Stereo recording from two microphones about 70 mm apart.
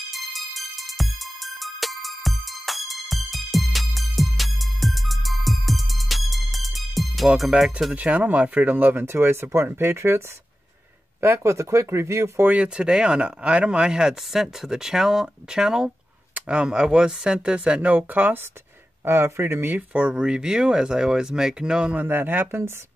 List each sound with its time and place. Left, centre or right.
0.1 s music: centre
7.3 s speech: centre
7.9 s speech: right
12.4 s speech: centre
19.0 s speech: right; by 21.9 s centre
21.9 s speech: right